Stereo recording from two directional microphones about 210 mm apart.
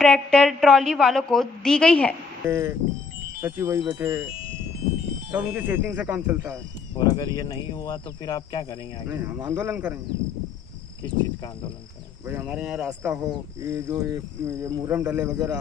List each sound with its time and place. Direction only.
0.0 s a woman's voice: 5° left (ahead or behind)
2.4 s speech: 15° right (ahead or behind)
5.3 s speech: 5° right (ahead or behind)
7.0 s speech: 20° left (ahead or behind)
9.1 s speech: 10° right (ahead or behind)
12.3 s speech: 10° right (ahead or behind)